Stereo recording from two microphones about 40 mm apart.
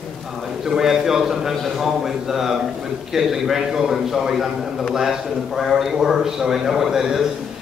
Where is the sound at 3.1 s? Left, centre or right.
Centre.